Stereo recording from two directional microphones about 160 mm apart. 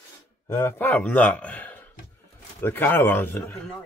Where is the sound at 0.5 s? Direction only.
15° left (ahead or behind).